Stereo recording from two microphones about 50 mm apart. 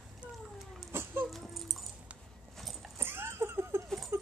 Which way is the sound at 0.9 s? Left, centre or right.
Right.